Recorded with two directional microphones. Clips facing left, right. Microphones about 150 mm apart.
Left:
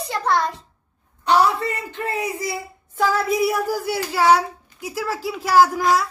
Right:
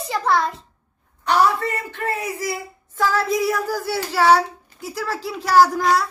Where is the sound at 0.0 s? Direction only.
5° right (ahead or behind).